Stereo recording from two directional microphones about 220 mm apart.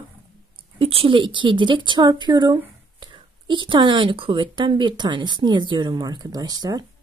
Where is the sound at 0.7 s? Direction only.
25° right (ahead or behind).